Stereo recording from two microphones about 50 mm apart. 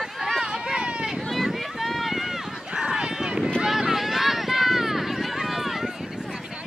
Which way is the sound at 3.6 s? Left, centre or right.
Centre.